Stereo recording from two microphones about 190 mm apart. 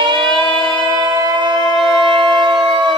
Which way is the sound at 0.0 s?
25° right (ahead or behind).